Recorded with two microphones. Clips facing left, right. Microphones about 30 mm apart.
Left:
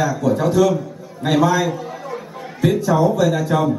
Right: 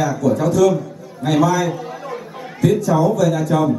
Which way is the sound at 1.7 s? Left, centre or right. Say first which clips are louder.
Even; centre.